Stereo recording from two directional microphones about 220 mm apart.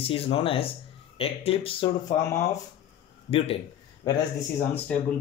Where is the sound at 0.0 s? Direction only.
25° left (ahead or behind).